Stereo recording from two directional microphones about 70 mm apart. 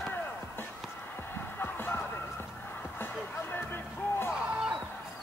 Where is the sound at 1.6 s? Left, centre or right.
Left.